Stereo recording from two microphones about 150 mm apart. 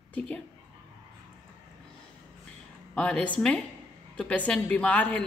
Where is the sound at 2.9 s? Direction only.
5° left (ahead or behind).